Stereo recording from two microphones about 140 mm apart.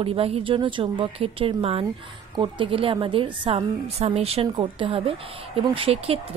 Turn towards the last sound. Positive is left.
turn(degrees=-40)  # may be behind; listen again after turning